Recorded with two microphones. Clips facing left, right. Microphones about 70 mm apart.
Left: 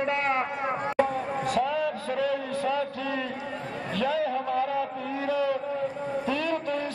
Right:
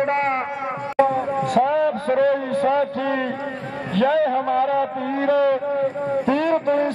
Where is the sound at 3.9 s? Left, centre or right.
Right.